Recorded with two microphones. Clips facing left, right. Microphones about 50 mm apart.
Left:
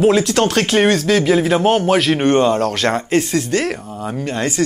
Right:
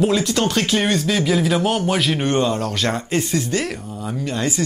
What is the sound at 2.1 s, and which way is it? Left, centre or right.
Speech, left.